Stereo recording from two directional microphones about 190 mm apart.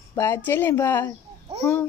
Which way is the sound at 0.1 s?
10° left (ahead or behind).